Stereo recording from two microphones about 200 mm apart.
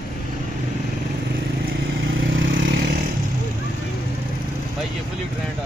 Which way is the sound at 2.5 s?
65° right (ahead or behind).